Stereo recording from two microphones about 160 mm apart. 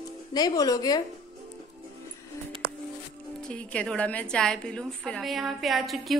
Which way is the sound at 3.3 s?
5° left (ahead or behind).